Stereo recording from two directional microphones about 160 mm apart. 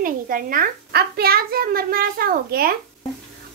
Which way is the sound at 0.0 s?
60° right (ahead or behind).